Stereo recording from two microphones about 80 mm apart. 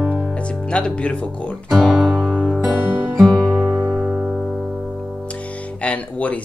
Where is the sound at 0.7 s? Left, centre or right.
Centre.